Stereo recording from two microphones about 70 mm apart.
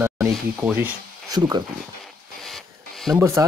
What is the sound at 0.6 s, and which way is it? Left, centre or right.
Speech, right.